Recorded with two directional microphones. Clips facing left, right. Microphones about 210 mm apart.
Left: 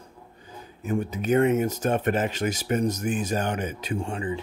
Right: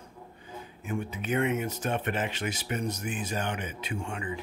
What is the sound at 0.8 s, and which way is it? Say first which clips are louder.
Speech: left 7 dB; 40° left (ahead or behind).